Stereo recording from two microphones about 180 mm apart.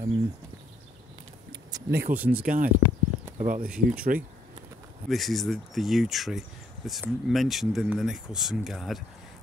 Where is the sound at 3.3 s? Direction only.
50° right (ahead or behind).